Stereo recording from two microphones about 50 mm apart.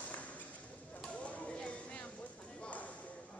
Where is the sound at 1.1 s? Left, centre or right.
Left.